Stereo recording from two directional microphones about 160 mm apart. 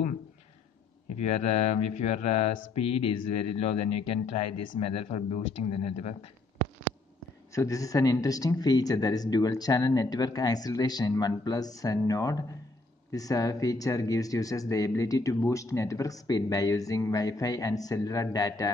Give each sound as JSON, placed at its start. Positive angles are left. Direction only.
{"t": 1.2, "sound": "speech", "side_deg": 45}
{"t": 7.5, "sound": "speech", "side_deg": 20}